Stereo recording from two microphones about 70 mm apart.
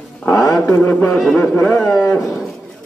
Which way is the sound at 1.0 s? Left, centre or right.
Centre.